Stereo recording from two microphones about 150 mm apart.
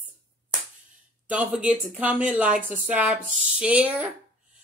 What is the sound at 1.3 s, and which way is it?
Speech, 5° right (ahead or behind).